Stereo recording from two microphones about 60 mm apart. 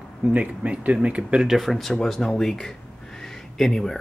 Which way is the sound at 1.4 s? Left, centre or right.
Centre.